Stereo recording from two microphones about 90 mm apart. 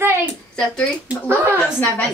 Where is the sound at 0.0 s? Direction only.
20° right (ahead or behind).